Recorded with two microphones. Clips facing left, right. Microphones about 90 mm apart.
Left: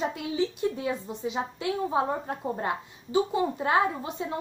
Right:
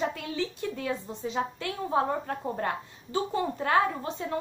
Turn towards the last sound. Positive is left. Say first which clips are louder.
# left 1 dB
turn(degrees=15)  # may be behind; listen again after turning